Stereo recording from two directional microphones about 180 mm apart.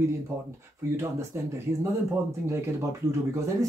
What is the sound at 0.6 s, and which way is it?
Speech, 15° right (ahead or behind).